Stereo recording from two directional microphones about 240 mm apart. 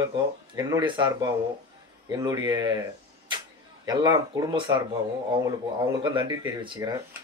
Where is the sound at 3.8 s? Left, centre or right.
Centre.